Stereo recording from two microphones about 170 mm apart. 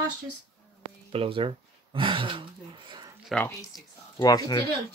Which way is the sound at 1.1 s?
30° right (ahead or behind).